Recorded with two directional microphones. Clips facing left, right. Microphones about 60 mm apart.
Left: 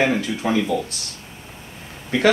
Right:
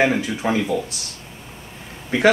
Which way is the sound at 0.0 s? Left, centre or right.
Centre.